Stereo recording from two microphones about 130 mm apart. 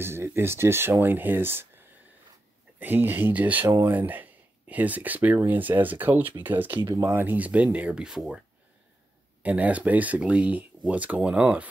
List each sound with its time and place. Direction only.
0.0 s speech: 20° right (ahead or behind)
9.4 s speech: 10° right (ahead or behind)